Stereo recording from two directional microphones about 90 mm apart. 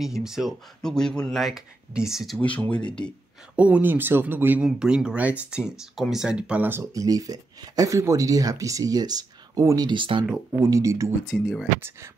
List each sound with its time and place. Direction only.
0.0 s speech: 5° right (ahead or behind)
2.4 s speech: 15° left (ahead or behind)
3.5 s speech: 15° right (ahead or behind)
4.6 s speech: 10° right (ahead or behind)
6.7 s speech: 35° right (ahead or behind)
9.8 s speech: 60° right (ahead or behind)
10.6 s speech: 35° right (ahead or behind)